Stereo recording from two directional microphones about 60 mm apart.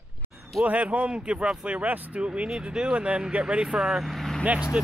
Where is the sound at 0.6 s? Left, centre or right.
Right.